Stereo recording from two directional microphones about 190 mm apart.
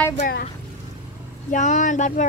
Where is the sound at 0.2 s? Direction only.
55° left (ahead or behind).